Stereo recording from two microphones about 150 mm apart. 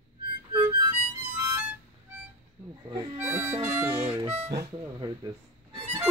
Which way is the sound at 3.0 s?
15° right (ahead or behind).